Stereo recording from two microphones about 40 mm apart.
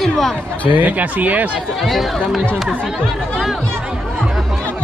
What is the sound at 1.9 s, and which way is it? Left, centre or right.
Speech, centre.